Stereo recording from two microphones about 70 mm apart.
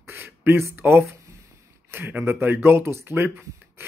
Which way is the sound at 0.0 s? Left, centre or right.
Right.